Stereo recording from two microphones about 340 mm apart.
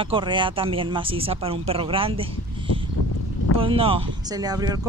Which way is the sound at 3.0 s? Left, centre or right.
Left.